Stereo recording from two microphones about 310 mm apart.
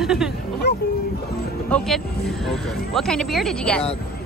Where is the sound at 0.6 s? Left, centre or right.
Left.